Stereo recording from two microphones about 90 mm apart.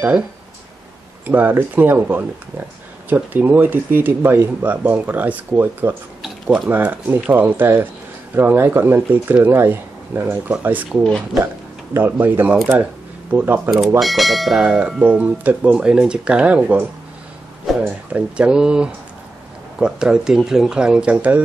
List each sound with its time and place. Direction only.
1.2 s speech: 20° right (ahead or behind)
6.2 s a sound: 5° right (ahead or behind)
6.7 s speech: 20° right (ahead or behind)
11.9 s speech: 20° right (ahead or behind)
13.9 s speech: centre (ahead or behind); by 21.4 s 15° right (ahead or behind)